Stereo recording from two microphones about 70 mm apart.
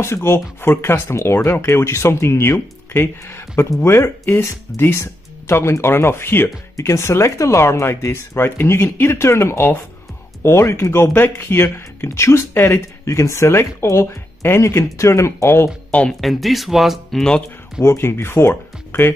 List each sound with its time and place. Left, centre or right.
0.0 s speech: left
15.9 s speech: centre
16.2 s speech: centre
17.8 s speech: left